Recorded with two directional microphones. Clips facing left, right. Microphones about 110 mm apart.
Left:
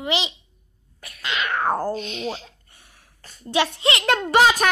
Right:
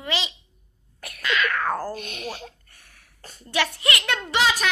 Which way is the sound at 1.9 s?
50° right (ahead or behind).